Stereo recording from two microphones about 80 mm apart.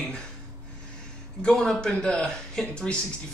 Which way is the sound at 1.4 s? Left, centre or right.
Centre.